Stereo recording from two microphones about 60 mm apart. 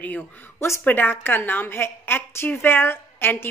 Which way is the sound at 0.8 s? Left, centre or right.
Left.